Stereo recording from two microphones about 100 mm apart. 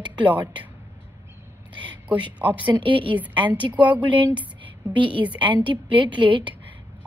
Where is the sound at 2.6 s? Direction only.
55° right (ahead or behind).